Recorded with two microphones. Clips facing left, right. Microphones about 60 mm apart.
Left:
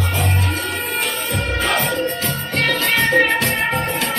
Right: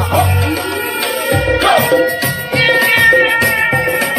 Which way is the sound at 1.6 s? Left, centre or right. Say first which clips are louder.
Right 9 dB; right.